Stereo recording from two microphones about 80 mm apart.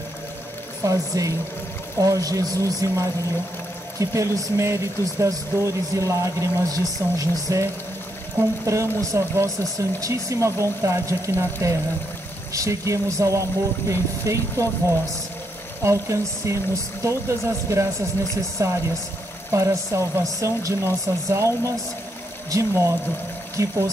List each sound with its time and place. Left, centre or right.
0.8 s speech: right